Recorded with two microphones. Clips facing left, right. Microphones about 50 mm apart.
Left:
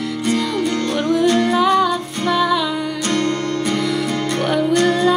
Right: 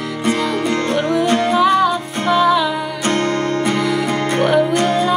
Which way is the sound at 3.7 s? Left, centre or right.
Centre.